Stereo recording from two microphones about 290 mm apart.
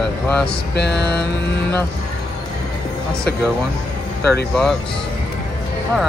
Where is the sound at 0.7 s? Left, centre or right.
Left.